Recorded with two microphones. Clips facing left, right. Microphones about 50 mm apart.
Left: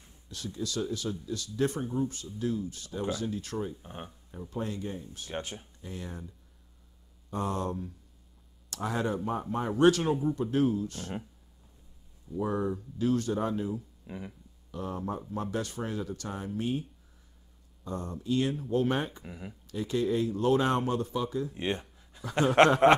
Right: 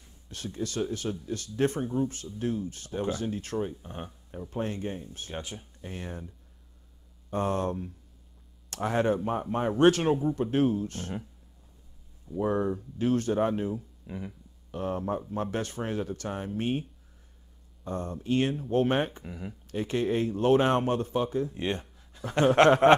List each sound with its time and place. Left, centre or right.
0.3 s speech: right
7.2 s speech: right
12.4 s speech: right
14.0 s speech: centre
14.7 s speech: right
17.8 s speech: right
19.2 s speech: centre
19.7 s speech: right
21.5 s a sound: centre